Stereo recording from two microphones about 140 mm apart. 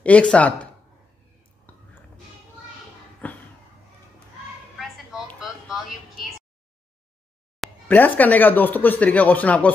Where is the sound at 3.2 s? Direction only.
10° left (ahead or behind).